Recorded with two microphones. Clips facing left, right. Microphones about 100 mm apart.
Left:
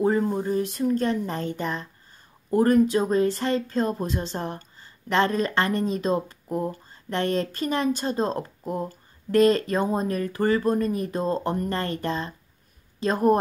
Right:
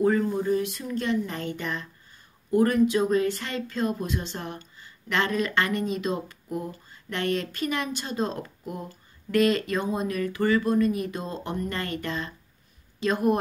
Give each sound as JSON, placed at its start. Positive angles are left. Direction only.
{"t": 0.0, "sound": "speech", "side_deg": 30}